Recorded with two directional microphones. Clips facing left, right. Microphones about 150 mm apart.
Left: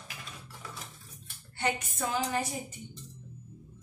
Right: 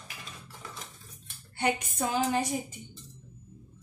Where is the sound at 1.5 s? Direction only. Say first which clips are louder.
Right 3 dB; 15° right (ahead or behind).